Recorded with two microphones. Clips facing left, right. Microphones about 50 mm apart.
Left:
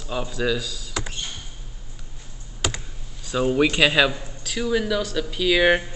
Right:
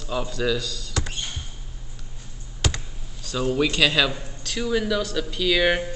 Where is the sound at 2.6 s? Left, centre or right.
Centre.